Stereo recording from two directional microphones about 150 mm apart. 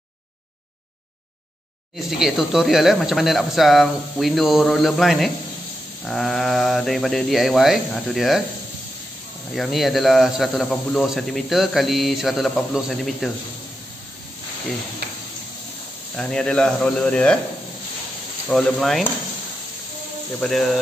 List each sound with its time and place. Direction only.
2.0 s speech: 5° right (ahead or behind)
9.6 s speech: centre (ahead or behind)
15.0 s sizzle: 90° right
16.2 s speech: 5° left (ahead or behind)
18.5 s speech: centre (ahead or behind)
20.3 s speech: centre (ahead or behind)